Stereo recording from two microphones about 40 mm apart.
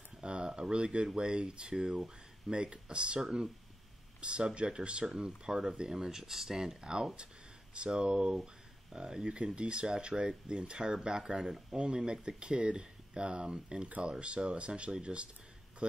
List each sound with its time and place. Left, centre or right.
0.2 s speech: right
3.2 s speech: centre
4.2 s speech: right